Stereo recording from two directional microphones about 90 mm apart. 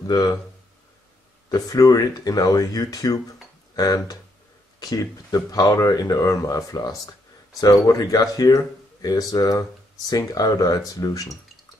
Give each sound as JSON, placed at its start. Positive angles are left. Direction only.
{"t": 0.0, "sound": "speech", "side_deg": 45}
{"t": 1.5, "sound": "speech", "side_deg": 45}